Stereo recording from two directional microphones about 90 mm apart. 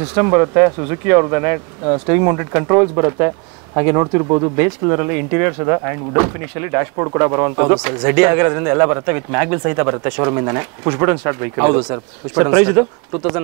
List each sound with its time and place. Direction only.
0.0 s speech: 20° right (ahead or behind)
7.7 s speech: 15° right (ahead or behind)